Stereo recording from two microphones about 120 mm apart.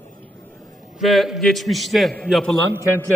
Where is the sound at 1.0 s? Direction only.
Centre (ahead or behind).